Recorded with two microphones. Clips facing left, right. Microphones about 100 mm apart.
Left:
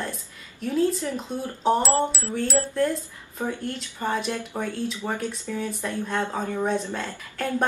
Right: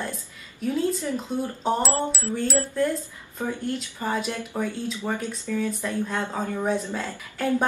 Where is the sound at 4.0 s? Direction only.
5° right (ahead or behind).